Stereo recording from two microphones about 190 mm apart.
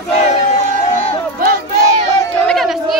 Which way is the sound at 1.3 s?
50° right (ahead or behind).